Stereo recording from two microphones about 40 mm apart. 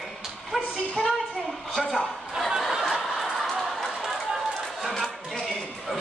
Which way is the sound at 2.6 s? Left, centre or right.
Centre.